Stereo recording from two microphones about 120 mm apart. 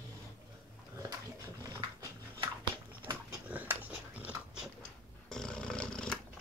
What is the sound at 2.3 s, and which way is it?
Dog, 45° right (ahead or behind).